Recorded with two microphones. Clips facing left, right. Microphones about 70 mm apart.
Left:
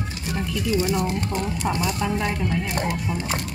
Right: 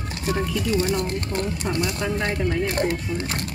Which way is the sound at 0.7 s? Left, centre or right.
Right.